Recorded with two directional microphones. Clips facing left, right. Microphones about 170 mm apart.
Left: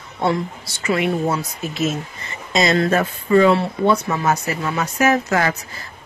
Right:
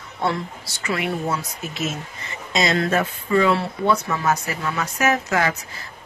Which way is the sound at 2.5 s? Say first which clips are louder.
Left 3 dB; 40° left (ahead or behind).